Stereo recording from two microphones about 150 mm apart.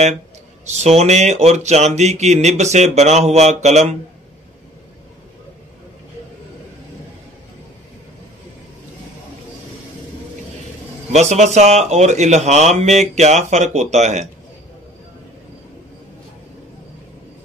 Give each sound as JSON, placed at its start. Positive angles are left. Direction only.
{"t": 0.7, "sound": "speech", "side_deg": -45}
{"t": 11.1, "sound": "speech", "side_deg": -50}